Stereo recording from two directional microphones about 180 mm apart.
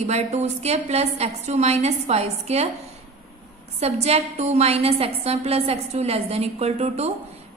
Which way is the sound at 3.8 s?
35° right (ahead or behind).